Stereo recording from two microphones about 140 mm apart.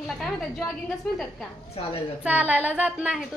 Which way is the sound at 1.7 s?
45° left (ahead or behind).